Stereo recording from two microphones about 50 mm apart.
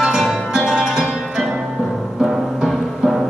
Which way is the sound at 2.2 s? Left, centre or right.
Centre.